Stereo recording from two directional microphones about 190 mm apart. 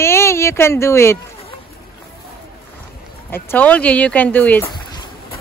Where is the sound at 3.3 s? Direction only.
10° left (ahead or behind).